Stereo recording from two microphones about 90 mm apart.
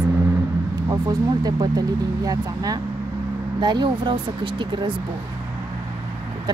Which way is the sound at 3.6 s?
55° right (ahead or behind).